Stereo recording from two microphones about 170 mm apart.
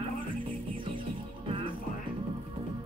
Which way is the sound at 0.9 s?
30° right (ahead or behind).